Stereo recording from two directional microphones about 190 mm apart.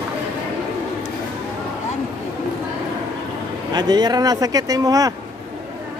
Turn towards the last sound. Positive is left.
turn(degrees=-20)  # may be behind; listen again after turning